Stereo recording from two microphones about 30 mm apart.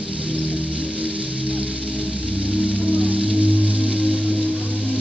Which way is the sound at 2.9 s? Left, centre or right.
Right.